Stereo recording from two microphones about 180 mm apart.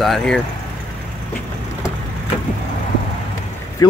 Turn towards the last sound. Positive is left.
turn(degrees=20)  # may be behind; listen again after turning